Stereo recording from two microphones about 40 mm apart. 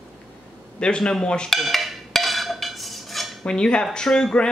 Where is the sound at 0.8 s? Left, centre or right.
Left.